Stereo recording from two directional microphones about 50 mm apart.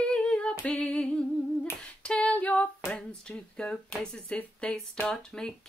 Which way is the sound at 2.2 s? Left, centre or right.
Left.